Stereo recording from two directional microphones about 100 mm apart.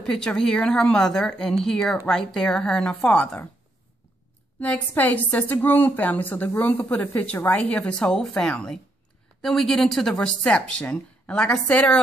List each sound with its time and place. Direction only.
0.0 s a woman's voice: 5° left (ahead or behind)
4.6 s a woman's voice: 15° left (ahead or behind)